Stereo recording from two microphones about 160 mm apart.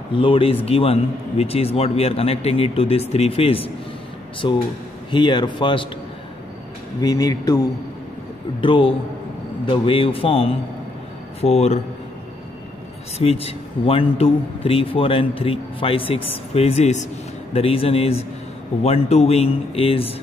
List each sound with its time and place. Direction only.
0.1 s a man's voice: 35° left (ahead or behind)
7.0 s speech: 25° left (ahead or behind)
8.5 s a man's voice: 35° left (ahead or behind)
13.2 s a man's voice: 40° left (ahead or behind)